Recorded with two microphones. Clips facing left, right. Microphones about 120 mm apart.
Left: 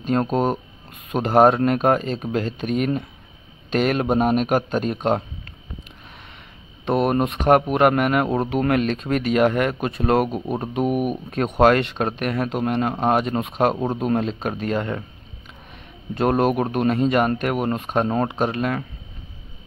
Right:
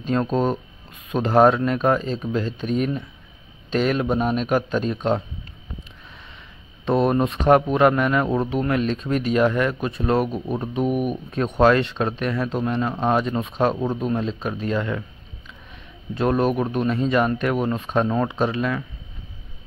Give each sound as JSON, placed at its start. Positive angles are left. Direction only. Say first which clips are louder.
{"t": 0.0, "sound": "speech", "louder": "left 1 dB", "side_deg": 50}
{"t": 7.1, "sound": "speech", "louder": "even", "side_deg": 55}
{"t": 10.2, "sound": "speech", "louder": "left 1 dB", "side_deg": 20}
{"t": 11.6, "sound": "speech", "louder": "left 1 dB", "side_deg": 55}
{"t": 16.2, "sound": "speech", "louder": "left 1 dB", "side_deg": 55}